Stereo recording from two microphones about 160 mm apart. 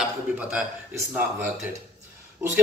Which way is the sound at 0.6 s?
15° right (ahead or behind).